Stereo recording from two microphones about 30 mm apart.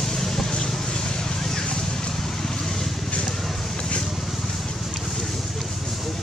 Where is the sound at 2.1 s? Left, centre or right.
Centre.